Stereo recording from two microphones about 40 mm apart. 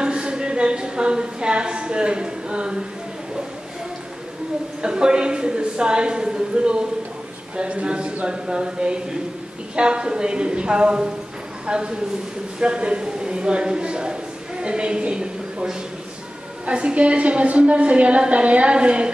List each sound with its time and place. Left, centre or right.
0.0 s a woman's voice: right
4.8 s a woman's voice: right